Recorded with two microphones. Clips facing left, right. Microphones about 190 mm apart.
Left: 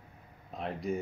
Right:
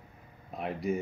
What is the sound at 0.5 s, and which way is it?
Speech, 5° right (ahead or behind).